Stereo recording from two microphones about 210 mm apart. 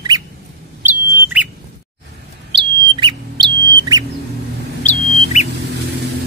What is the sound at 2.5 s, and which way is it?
Bird, 20° right (ahead or behind).